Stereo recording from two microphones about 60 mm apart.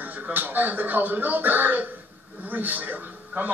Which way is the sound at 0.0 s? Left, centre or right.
Right.